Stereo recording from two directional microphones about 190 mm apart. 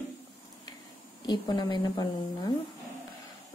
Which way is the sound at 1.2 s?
20° left (ahead or behind).